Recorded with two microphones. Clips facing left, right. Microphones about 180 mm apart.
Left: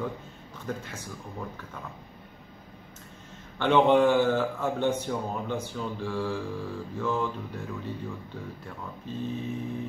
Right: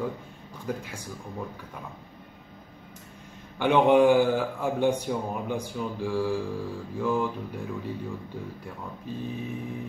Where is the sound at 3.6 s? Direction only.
10° right (ahead or behind).